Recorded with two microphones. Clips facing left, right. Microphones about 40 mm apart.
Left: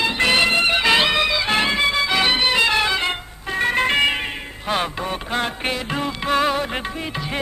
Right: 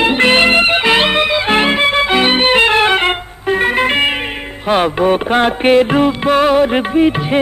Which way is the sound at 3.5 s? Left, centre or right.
Right.